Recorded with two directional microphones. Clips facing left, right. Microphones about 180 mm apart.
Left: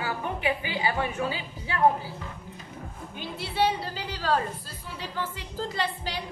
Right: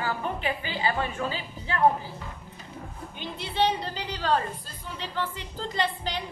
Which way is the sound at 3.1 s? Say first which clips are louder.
Even; 5° left (ahead or behind).